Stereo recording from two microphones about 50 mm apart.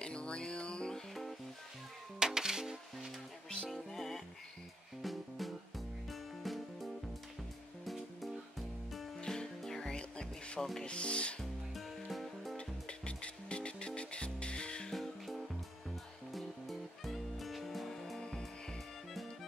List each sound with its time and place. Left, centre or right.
0.0 s music: left
2.1 s music: centre
3.7 s music: centre
9.2 s music: centre
9.9 s music: centre
10.6 s rub: centre
10.9 s speech: left
11.7 s music: centre
12.5 s music: left
15.0 s music: centre